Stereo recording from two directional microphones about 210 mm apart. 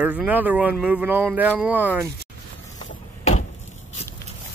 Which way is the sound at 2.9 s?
35° left (ahead or behind).